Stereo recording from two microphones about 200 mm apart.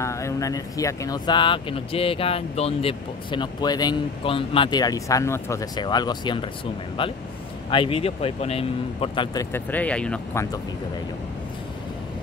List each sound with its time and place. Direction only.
0.0 s speech: 15° left (ahead or behind)